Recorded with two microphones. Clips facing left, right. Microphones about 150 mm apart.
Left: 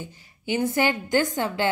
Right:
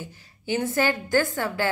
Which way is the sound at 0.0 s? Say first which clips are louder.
Left 1 dB; 15° left (ahead or behind).